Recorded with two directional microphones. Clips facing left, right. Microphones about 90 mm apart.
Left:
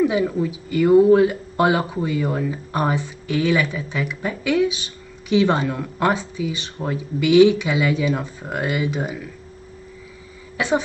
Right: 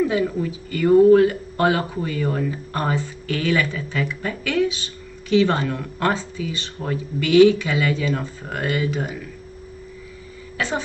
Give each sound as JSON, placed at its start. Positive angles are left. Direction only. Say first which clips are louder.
{"t": 0.0, "sound": "speech", "louder": "left 2 dB", "side_deg": 10}